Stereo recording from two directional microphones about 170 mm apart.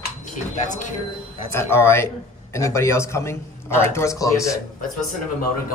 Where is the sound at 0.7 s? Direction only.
45° left (ahead or behind).